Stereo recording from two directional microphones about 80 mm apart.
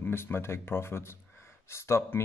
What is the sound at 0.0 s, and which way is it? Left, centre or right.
Speech, left.